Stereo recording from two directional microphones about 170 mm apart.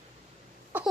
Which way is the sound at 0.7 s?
10° right (ahead or behind).